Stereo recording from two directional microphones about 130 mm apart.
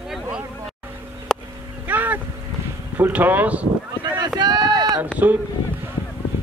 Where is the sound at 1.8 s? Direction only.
15° right (ahead or behind).